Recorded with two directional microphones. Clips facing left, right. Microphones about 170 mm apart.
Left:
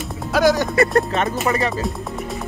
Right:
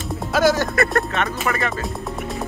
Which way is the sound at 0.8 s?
30° left (ahead or behind).